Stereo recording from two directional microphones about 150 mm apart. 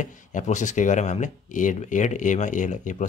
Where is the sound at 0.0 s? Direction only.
55° left (ahead or behind).